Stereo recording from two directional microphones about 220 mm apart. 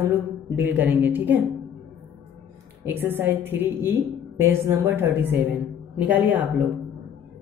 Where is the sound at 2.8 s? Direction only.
10° right (ahead or behind).